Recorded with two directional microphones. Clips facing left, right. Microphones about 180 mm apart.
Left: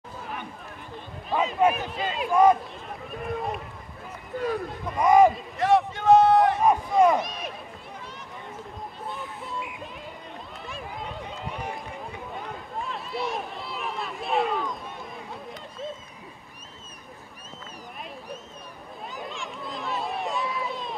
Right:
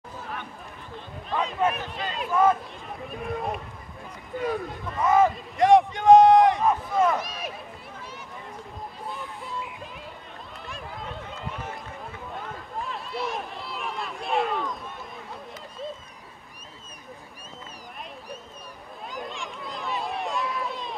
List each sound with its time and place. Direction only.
1.3 s a sound: 5° left (ahead or behind)
3.2 s speech: centre (ahead or behind)
4.8 s speech: 15° left (ahead or behind)
5.6 s a sound: 15° right (ahead or behind)
6.6 s speech: 15° left (ahead or behind)
7.2 s speech: centre (ahead or behind)
9.0 s a sound: centre (ahead or behind)
11.2 s run: 15° left (ahead or behind)
12.7 s run: centre (ahead or behind)
19.1 s run: centre (ahead or behind)